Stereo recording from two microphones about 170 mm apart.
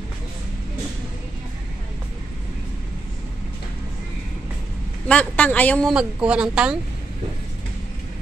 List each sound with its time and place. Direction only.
5.0 s a woman's voice: 5° left (ahead or behind)
5.9 s speech: 5° right (ahead or behind)